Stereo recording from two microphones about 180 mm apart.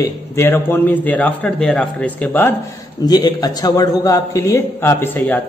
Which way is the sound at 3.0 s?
20° left (ahead or behind).